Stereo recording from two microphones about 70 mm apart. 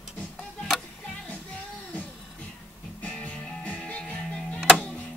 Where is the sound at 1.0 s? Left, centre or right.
Centre.